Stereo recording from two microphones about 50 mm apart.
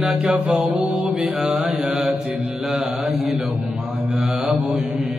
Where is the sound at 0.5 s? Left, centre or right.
Right.